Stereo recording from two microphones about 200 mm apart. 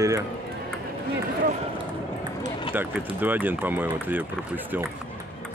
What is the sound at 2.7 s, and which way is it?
Speech, 10° right (ahead or behind).